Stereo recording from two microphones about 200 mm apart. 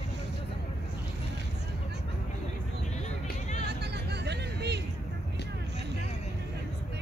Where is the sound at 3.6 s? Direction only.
55° right (ahead or behind).